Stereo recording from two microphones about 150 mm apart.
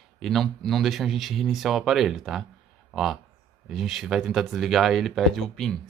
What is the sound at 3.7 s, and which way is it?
Speech, centre (ahead or behind).